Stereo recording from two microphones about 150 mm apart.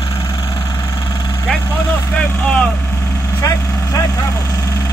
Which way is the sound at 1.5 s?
5° left (ahead or behind).